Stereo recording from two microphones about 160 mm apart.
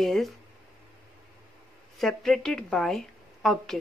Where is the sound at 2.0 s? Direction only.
Centre (ahead or behind).